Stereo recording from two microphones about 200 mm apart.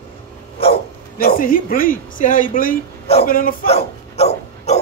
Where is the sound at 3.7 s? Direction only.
30° left (ahead or behind).